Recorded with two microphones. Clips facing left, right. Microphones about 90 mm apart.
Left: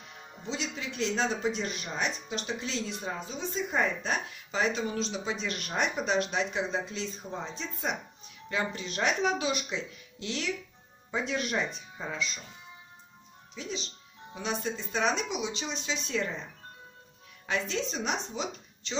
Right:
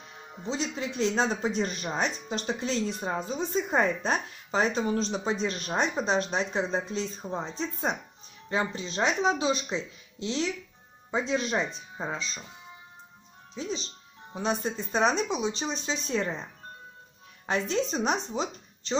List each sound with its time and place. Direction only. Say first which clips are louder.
0.5 s speech: right 4 dB; 35° right (ahead or behind)
13.6 s speech: right 4 dB; 35° right (ahead or behind)
17.5 s speech: right 4 dB; 40° right (ahead or behind)